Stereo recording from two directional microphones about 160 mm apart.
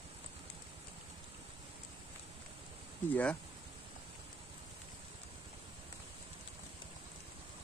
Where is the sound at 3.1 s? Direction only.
10° left (ahead or behind).